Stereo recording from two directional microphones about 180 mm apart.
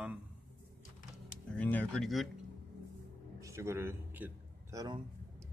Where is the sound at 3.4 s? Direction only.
15° right (ahead or behind).